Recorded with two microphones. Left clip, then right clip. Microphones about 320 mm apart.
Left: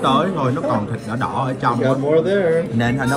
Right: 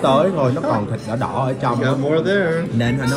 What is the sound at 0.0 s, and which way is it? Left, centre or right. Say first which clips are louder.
A man's voice: right 2 dB; centre.